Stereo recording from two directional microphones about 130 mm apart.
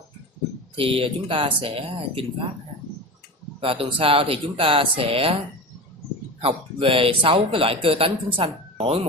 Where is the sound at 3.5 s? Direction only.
45° right (ahead or behind).